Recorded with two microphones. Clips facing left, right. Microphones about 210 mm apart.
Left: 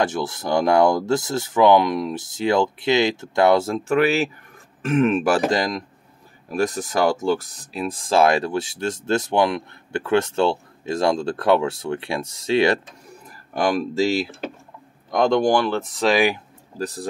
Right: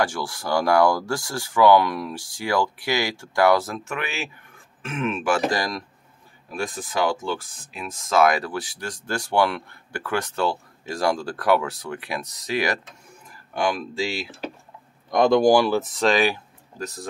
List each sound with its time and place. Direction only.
0.0 s speech: 20° left (ahead or behind); by 5.4 s 40° left (ahead or behind)
5.5 s speech: 20° left (ahead or behind)
6.5 s speech: 40° left (ahead or behind)
13.5 s speech: 40° left (ahead or behind)
15.0 s speech: centre (ahead or behind)
16.7 s speech: 35° left (ahead or behind)